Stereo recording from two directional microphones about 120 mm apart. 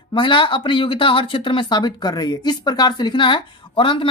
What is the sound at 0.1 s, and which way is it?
Speech, 45° left (ahead or behind).